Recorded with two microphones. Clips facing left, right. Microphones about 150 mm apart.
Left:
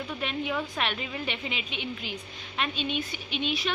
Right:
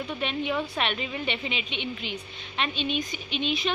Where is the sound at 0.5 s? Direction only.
10° right (ahead or behind).